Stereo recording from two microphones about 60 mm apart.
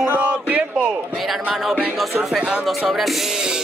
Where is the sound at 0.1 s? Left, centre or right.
Right.